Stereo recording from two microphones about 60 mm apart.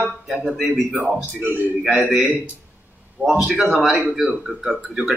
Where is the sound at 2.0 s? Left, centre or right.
Centre.